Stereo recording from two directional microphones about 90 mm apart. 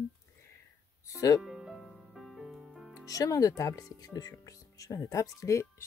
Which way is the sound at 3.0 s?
40° left (ahead or behind).